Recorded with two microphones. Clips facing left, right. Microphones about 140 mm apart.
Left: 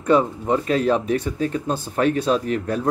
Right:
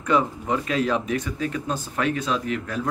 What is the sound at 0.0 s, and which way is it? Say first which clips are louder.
Speech: left 4 dB; 35° left (ahead or behind).